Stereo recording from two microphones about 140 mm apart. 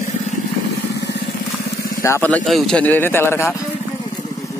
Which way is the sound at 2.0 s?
15° left (ahead or behind).